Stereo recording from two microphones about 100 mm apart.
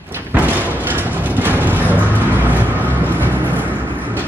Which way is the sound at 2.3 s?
20° right (ahead or behind).